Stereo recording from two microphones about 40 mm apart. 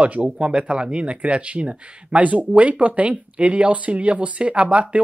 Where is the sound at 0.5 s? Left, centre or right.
Right.